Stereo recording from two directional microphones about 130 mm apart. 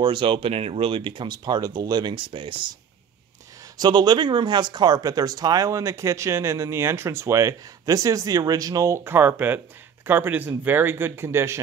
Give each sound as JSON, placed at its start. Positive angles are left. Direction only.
{"t": 0.0, "sound": "speech", "side_deg": -40}
{"t": 3.8, "sound": "speech", "side_deg": -35}